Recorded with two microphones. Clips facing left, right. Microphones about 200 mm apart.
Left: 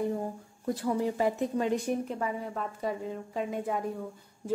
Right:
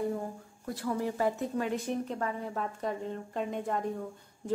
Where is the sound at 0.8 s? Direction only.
20° left (ahead or behind).